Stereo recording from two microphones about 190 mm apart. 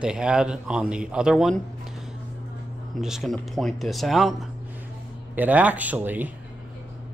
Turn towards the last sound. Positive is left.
turn(degrees=-10)  # may be behind; listen again after turning